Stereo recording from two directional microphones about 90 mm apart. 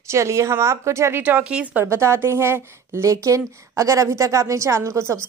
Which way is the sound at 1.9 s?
30° right (ahead or behind).